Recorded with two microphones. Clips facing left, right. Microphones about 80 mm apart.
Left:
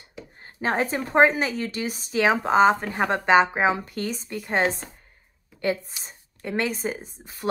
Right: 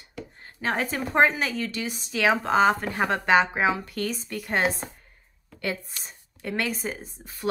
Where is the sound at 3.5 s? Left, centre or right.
Left.